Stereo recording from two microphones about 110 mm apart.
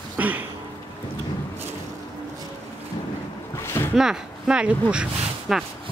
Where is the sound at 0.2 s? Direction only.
15° right (ahead or behind).